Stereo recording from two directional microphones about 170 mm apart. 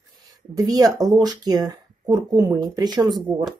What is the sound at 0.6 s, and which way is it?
Speech, 20° right (ahead or behind).